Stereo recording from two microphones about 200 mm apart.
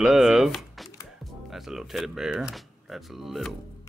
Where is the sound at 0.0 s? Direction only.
Centre (ahead or behind).